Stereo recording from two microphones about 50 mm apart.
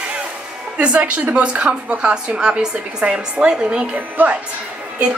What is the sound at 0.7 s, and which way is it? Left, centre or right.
A woman's voice, right.